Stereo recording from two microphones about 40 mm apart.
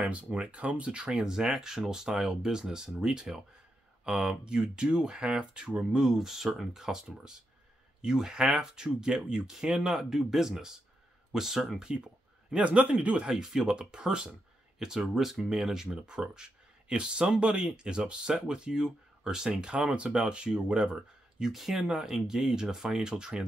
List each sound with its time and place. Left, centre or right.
0.0 s speech: right
1.3 s speech: centre
9.9 s speech: centre; by 13.4 s right
13.4 s speech: centre
14.8 s speech: centre
21.5 s speech: centre
21.8 s speech: centre